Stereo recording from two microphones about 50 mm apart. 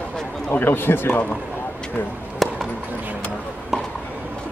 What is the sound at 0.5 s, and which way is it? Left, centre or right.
Speech, left.